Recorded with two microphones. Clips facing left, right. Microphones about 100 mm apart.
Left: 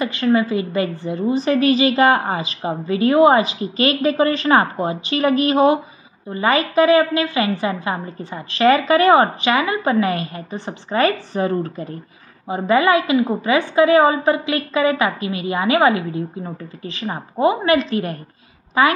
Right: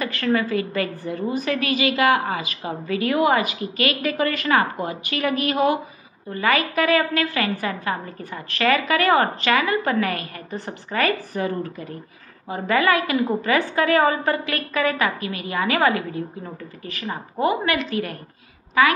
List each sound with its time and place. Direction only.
0.0 s a woman's voice: 20° left (ahead or behind)
12.4 s a woman's voice: 20° left (ahead or behind)